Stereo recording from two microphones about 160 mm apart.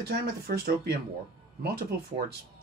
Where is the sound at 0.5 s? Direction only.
80° right.